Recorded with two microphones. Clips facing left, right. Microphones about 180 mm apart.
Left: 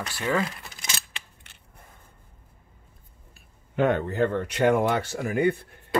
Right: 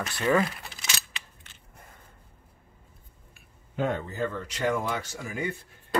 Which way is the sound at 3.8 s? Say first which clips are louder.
Left 6 dB; 70° left (ahead or behind).